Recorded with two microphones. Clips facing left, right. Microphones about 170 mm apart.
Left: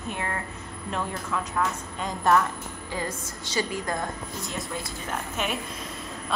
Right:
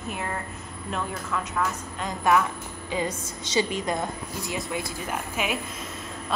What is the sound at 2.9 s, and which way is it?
A woman's voice, 20° right (ahead or behind).